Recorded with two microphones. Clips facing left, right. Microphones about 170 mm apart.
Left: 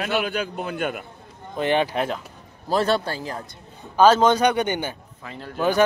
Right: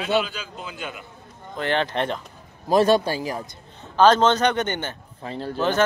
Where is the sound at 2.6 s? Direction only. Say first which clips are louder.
Right 4 dB; 15° right (ahead or behind).